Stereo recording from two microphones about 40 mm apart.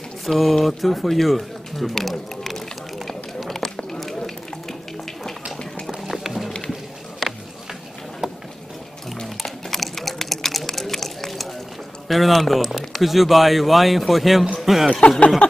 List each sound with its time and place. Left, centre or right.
0.2 s speech: centre
3.4 s run: centre
5.9 s music: centre
6.7 s a sound: centre
9.2 s a sound: centre
12.1 s speech: centre
14.9 s speech: left